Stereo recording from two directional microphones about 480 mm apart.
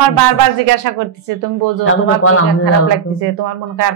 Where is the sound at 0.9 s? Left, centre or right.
Right.